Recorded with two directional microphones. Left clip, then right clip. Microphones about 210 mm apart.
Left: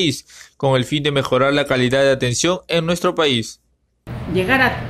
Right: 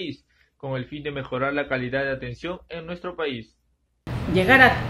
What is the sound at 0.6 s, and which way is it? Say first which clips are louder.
Speech: left 14 dB; 50° left (ahead or behind).